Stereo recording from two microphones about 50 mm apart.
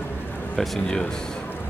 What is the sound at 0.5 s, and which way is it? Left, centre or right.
Speech, centre.